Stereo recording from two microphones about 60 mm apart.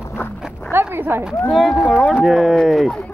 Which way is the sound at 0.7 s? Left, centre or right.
Right.